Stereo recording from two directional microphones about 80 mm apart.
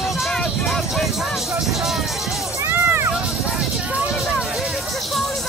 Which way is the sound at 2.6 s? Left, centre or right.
Right.